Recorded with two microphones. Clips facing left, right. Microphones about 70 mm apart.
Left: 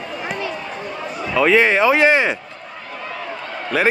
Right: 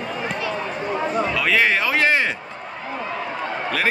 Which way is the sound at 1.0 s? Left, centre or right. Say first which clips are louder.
Right 7 dB; right.